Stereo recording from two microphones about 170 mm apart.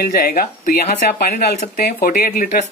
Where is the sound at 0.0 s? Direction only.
60° left (ahead or behind).